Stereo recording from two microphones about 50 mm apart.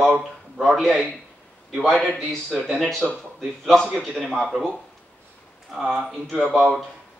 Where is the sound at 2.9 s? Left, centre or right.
Centre.